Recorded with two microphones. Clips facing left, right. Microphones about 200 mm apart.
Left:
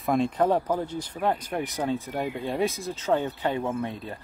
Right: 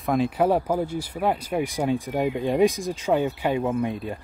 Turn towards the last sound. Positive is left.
turn(degrees=-15)  # may be behind; listen again after turning